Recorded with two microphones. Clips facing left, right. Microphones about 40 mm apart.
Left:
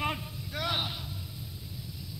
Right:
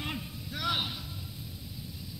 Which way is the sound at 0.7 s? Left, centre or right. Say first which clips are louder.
Right 1 dB; centre.